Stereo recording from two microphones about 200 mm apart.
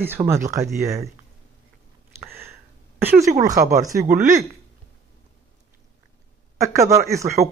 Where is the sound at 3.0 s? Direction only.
10° right (ahead or behind).